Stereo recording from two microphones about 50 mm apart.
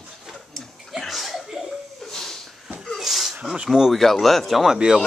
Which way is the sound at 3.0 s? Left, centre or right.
Centre.